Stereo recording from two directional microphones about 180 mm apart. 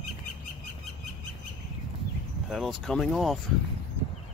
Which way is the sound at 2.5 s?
Centre (ahead or behind).